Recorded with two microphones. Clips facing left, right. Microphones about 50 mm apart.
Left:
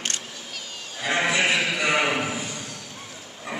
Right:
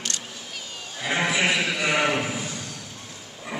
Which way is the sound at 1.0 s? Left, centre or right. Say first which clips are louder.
Left 1 dB; centre.